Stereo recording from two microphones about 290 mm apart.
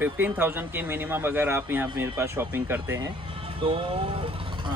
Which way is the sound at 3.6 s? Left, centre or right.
Centre.